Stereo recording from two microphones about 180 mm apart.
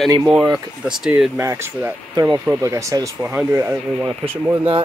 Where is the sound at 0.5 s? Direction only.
5° right (ahead or behind).